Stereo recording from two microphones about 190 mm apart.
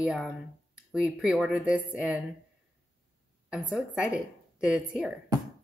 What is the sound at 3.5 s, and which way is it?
Speech, 5° right (ahead or behind).